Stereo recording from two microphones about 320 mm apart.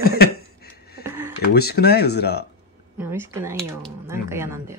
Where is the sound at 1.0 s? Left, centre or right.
Centre.